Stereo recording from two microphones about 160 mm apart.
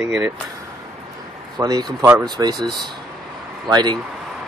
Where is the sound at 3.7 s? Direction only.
25° right (ahead or behind).